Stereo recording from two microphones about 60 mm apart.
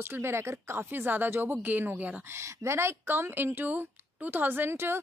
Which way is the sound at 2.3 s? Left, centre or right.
Right.